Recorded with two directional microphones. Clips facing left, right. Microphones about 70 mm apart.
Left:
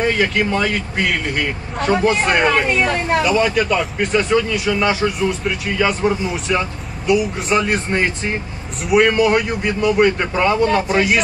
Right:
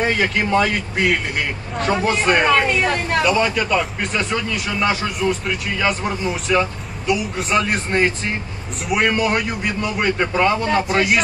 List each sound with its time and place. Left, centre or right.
0.0 s speech: centre